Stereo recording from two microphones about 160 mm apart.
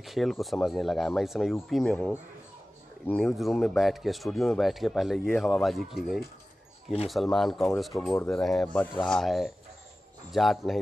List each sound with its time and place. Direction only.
0.0 s speech: centre (ahead or behind)
7.9 s speech: 20° left (ahead or behind)
8.3 s speech: 5° left (ahead or behind)